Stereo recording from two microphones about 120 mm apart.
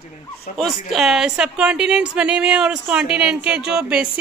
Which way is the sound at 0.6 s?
Centre (ahead or behind).